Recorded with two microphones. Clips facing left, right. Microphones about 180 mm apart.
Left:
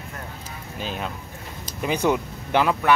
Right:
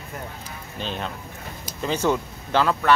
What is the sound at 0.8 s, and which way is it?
Speech, 5° left (ahead or behind).